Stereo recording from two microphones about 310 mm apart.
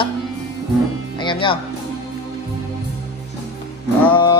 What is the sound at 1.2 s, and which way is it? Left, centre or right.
Speech, centre.